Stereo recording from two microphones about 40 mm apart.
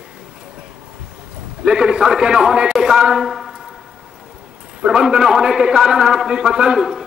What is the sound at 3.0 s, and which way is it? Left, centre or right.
Speech, centre.